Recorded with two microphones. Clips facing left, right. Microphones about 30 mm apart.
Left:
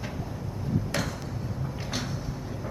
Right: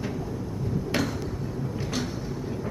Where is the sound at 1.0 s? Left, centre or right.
Centre.